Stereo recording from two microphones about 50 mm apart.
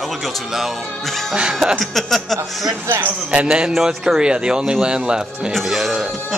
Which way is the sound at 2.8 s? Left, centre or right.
Right.